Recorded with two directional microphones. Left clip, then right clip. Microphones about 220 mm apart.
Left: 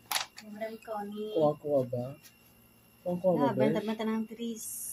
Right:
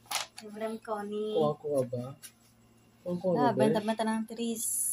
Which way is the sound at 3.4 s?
45° right (ahead or behind).